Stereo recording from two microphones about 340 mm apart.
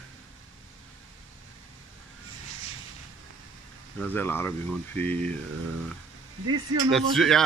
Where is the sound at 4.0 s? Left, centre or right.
Centre.